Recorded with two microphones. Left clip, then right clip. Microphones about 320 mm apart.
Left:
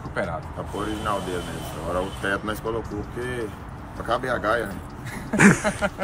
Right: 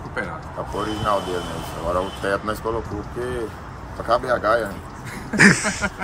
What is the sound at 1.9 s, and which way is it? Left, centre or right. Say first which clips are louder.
Speech: right 3 dB; centre.